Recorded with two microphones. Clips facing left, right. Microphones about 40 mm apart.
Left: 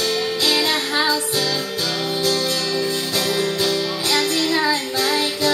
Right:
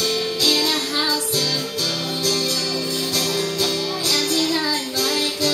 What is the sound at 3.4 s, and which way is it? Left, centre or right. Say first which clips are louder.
Music: left 2 dB; left.